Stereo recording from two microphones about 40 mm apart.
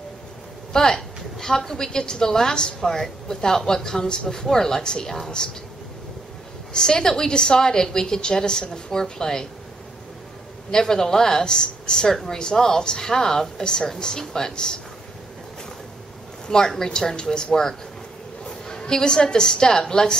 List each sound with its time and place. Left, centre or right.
0.7 s a woman's voice: centre
6.7 s a woman's voice: centre
10.7 s a woman's voice: centre
16.4 s a woman's voice: centre